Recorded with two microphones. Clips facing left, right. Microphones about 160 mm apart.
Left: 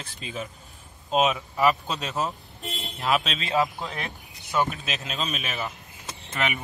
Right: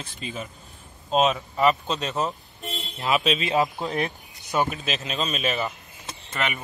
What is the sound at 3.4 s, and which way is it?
Speech, 20° right (ahead or behind).